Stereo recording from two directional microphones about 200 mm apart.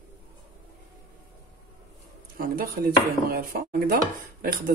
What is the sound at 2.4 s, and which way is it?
Speech, 45° right (ahead or behind).